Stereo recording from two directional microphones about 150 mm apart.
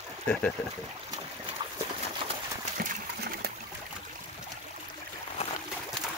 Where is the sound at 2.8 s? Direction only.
80° right.